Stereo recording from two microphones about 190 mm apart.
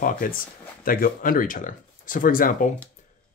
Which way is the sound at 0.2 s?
45° left (ahead or behind).